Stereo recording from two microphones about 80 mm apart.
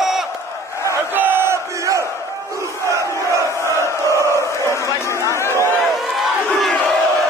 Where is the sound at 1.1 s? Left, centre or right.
Right.